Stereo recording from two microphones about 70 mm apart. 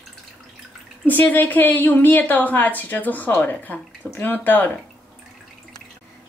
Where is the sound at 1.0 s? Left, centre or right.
Left.